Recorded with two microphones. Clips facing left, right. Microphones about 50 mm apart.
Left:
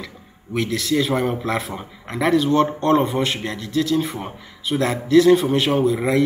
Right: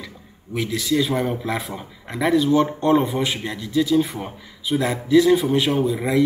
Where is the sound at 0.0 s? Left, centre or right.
Centre.